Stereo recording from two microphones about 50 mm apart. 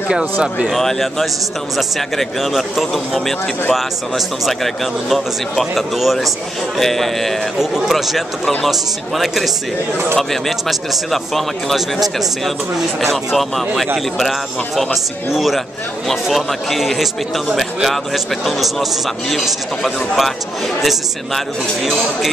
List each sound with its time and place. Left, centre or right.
0.1 s speech: centre
0.7 s a man's voice: centre
5.1 s a man's voice: centre
13.0 s a man's voice: centre
15.3 s a man's voice: centre